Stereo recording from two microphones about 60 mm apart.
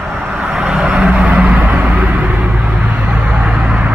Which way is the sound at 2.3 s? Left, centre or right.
Right.